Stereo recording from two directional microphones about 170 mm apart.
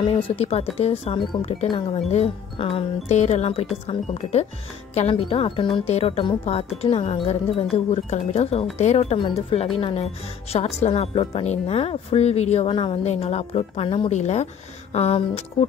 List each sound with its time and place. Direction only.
0.0 s speech: 35° left (ahead or behind)